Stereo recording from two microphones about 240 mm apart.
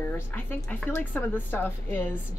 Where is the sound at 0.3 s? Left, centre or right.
Centre.